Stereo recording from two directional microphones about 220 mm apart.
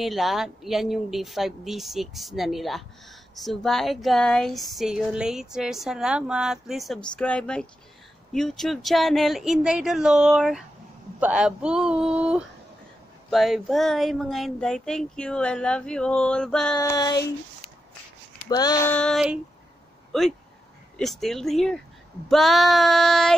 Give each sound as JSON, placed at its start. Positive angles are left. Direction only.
{"t": 0.0, "sound": "speech", "side_deg": 0}
{"t": 16.7, "sound": "a sound", "side_deg": 15}
{"t": 18.4, "sound": "speech", "side_deg": 15}
{"t": 18.9, "sound": "speech", "side_deg": 0}
{"t": 20.1, "sound": "a sound", "side_deg": 0}
{"t": 21.0, "sound": "speech", "side_deg": 0}